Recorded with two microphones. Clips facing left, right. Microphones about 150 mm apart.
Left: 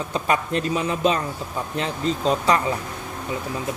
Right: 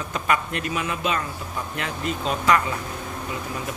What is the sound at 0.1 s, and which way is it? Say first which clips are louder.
Speech: left 2 dB; 30° left (ahead or behind).